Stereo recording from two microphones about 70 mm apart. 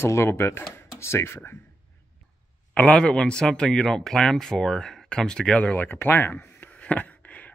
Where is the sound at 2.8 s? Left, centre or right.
Centre.